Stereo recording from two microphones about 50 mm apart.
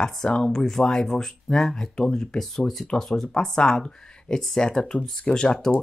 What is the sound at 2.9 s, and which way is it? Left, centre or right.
Speech, centre.